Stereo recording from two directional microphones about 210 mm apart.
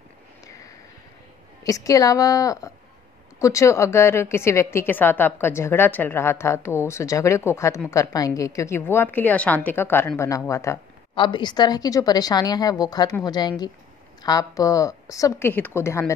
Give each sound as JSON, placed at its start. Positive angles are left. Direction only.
{"t": 1.6, "sound": "a woman's voice", "side_deg": 15}